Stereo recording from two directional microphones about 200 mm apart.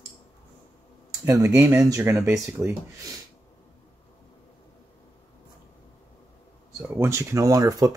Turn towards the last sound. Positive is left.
turn(degrees=-20)  # may be behind; listen again after turning